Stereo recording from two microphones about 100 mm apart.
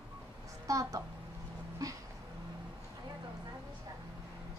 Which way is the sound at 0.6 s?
35° right (ahead or behind).